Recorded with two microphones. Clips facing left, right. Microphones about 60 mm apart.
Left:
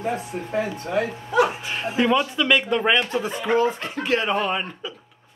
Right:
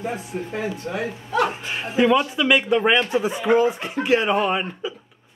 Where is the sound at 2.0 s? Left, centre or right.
Centre.